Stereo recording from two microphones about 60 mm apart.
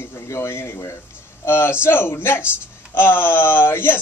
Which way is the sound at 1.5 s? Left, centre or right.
Left.